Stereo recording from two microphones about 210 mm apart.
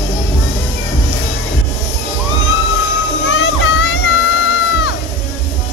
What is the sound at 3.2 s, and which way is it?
Music, 70° left (ahead or behind).